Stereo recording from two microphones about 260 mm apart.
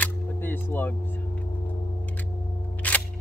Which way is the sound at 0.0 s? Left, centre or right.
Centre.